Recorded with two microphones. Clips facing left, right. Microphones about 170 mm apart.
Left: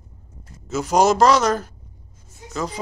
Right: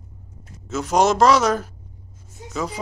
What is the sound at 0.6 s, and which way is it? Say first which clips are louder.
Speech: left 1 dB; centre (ahead or behind).